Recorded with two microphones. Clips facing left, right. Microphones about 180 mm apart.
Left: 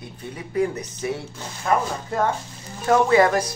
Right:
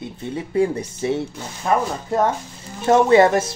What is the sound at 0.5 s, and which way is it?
Speech, 30° right (ahead or behind).